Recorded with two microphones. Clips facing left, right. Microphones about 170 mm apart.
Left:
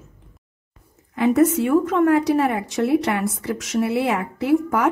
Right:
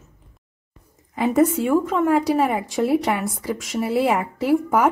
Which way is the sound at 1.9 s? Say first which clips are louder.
Left 2 dB; 5° right (ahead or behind).